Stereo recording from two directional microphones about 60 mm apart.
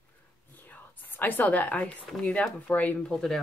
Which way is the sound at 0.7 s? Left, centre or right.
Left.